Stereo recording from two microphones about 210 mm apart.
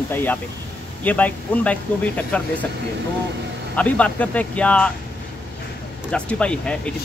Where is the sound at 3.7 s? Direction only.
5° left (ahead or behind).